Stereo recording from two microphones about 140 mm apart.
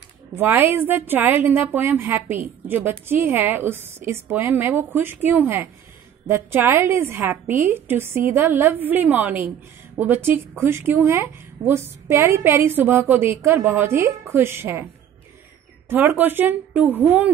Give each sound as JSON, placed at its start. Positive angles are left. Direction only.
{"t": 0.4, "sound": "a woman's voice", "side_deg": -15}
{"t": 15.9, "sound": "a woman's voice", "side_deg": -15}